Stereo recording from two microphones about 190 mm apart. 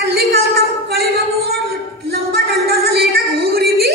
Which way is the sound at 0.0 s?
55° right (ahead or behind).